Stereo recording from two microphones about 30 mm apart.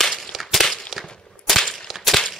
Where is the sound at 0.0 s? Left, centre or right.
Centre.